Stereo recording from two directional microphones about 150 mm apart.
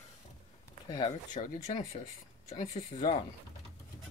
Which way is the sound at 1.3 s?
60° left (ahead or behind).